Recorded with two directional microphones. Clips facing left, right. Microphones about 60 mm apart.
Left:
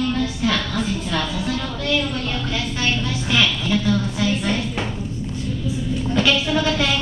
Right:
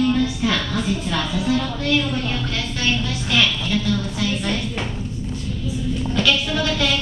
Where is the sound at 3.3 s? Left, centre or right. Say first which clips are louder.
Even; centre.